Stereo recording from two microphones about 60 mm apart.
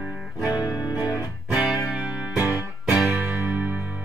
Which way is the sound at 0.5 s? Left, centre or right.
Left.